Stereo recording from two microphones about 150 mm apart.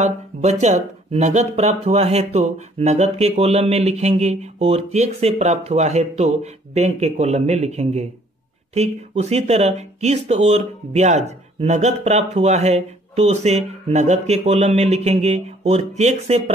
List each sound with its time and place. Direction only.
0.0 s speech: 50° right (ahead or behind)